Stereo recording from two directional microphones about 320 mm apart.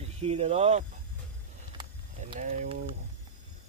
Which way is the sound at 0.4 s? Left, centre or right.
Centre.